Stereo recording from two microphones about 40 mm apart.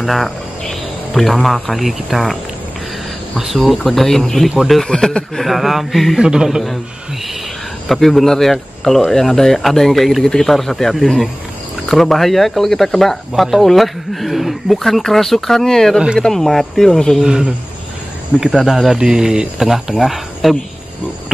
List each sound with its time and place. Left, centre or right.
0.0 s a man's voice: centre
3.3 s speech: centre
4.8 s speech: centre
5.5 s speech: centre
6.1 s a man's voice: centre
7.9 s speech: centre
10.2 s speech: centre
17.2 s a man's voice: centre
18.6 s a man's voice: centre
18.9 s speech: centre
19.6 s a man's voice: centre